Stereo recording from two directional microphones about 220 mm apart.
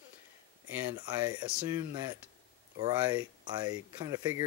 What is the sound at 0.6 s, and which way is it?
Speech, 15° right (ahead or behind).